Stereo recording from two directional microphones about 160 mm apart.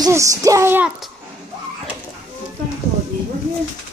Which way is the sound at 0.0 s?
20° right (ahead or behind).